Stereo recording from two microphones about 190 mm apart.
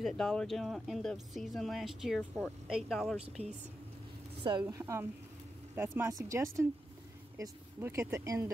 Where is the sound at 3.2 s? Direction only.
35° right (ahead or behind).